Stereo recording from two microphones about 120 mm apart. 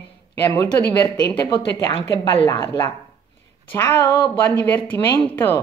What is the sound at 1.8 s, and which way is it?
A woman's voice, 30° left (ahead or behind).